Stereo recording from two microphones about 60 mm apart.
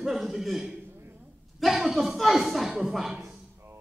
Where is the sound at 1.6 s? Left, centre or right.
Centre.